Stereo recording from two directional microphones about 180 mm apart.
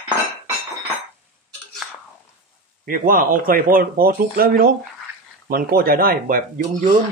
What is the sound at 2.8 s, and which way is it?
Speech, 50° right (ahead or behind).